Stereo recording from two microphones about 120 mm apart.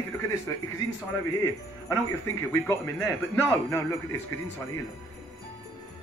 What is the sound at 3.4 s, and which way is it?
Speech, 20° left (ahead or behind).